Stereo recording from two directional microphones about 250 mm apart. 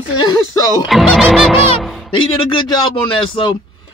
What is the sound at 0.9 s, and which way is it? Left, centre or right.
Music, centre.